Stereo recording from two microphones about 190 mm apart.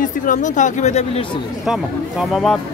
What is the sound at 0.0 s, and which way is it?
Speech, 40° left (ahead or behind).